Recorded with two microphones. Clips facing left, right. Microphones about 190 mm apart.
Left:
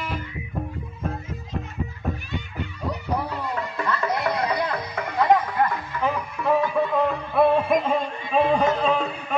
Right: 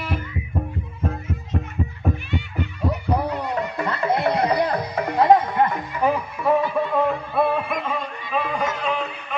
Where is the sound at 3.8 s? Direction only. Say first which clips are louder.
Right 3 dB; 30° right (ahead or behind).